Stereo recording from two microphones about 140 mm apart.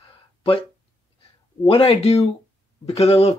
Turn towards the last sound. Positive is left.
turn(degrees=45)  # may be behind; listen again after turning